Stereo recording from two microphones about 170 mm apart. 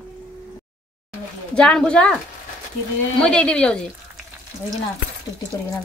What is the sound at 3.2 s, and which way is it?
Speech, 5° left (ahead or behind).